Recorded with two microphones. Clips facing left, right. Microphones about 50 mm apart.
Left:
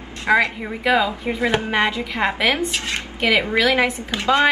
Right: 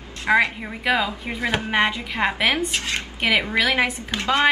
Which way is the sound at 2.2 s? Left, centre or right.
Centre.